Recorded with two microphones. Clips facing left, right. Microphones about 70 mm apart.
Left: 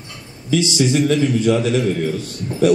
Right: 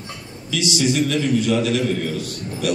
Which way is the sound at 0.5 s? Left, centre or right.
Left.